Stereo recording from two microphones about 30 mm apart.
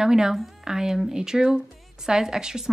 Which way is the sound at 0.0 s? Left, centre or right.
Centre.